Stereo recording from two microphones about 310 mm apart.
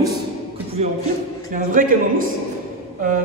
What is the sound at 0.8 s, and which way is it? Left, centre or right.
A woman's voice, right.